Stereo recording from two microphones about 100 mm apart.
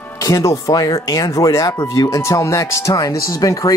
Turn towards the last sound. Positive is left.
turn(degrees=35)  # may be behind; listen again after turning